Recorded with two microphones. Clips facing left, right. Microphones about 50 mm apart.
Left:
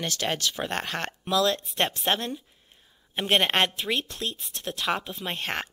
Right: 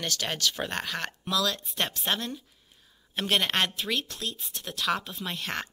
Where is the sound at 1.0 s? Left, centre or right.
Centre.